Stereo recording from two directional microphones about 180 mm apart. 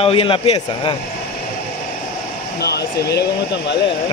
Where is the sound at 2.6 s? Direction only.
65° left (ahead or behind).